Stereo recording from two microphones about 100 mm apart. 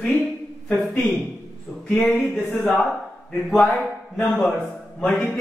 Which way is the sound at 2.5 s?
15° left (ahead or behind).